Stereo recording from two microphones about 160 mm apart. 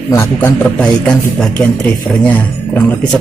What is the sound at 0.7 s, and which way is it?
Speech, 5° left (ahead or behind).